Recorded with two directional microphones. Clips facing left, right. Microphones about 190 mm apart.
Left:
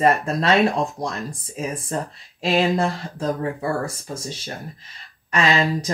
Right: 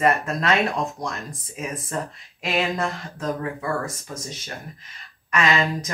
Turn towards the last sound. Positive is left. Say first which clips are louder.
# left 2 dB
turn(degrees=30)  # may be behind; listen again after turning